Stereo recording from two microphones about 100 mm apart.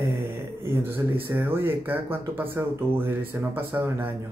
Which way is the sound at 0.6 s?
20° right (ahead or behind).